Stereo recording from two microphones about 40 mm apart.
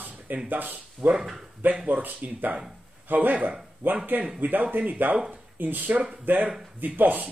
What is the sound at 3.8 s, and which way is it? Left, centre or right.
A man's voice, right.